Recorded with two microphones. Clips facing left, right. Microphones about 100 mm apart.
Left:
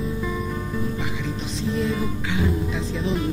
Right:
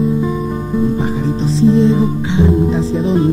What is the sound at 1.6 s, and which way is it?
Music, 30° right (ahead or behind).